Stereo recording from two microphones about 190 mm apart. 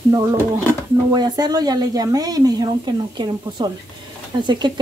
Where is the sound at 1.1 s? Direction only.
20° right (ahead or behind).